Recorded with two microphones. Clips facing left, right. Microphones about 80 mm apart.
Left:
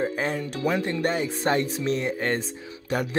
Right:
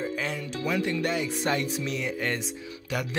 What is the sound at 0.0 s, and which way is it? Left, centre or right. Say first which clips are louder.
Speech: left 5 dB; left.